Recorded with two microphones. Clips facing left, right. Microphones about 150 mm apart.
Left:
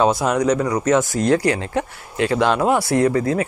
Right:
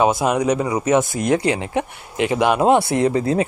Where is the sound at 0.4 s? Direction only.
10° right (ahead or behind).